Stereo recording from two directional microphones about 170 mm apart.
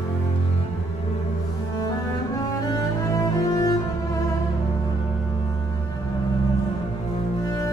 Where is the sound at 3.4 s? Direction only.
20° left (ahead or behind).